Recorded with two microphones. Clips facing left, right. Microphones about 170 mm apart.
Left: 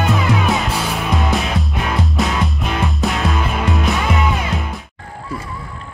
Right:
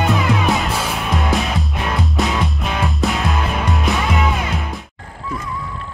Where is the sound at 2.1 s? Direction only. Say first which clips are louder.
Even; centre (ahead or behind).